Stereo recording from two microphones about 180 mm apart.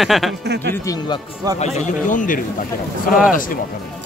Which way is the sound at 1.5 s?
35° left (ahead or behind).